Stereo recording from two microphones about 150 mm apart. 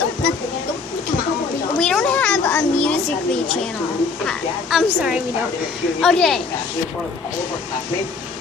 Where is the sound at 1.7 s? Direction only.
5° left (ahead or behind).